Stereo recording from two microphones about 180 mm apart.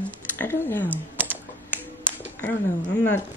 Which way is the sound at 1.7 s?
10° left (ahead or behind).